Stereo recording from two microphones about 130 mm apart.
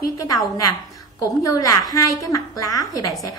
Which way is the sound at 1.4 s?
30° left (ahead or behind).